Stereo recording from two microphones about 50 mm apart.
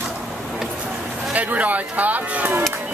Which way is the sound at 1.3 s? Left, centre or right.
Right.